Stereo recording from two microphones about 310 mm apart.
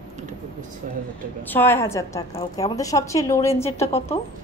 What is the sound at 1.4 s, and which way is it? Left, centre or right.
A woman's voice, centre.